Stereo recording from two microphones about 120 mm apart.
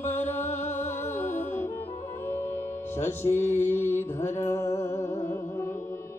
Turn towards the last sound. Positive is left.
turn(degrees=20)  # may be behind; listen again after turning